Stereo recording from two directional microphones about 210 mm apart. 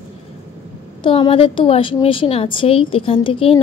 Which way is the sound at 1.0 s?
25° left (ahead or behind).